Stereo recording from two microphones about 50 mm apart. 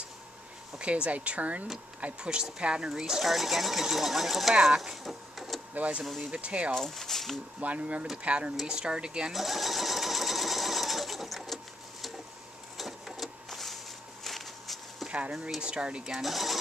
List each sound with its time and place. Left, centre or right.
0.7 s speech: right
5.8 s speech: right
6.7 s speech: centre
7.6 s speech: right
9.3 s sewing machine: centre
12.7 s printer: centre
14.2 s a sound: centre
15.0 s a sound: right
15.6 s speech: centre
16.0 s speech: centre